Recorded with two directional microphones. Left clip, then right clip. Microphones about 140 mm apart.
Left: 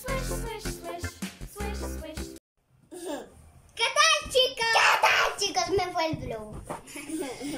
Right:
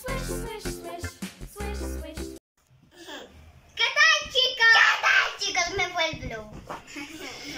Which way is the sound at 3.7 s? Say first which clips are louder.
Right 2 dB; 20° left (ahead or behind).